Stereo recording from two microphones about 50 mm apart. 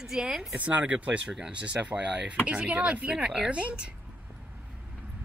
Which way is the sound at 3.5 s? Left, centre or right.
Right.